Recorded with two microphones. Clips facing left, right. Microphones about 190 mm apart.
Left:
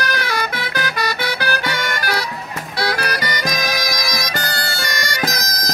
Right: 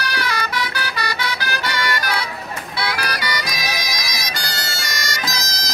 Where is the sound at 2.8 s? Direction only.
45° left (ahead or behind).